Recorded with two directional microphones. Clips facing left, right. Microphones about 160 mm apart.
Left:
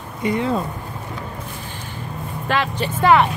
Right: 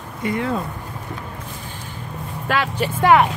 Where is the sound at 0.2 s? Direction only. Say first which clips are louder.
Left 2 dB; 20° left (ahead or behind).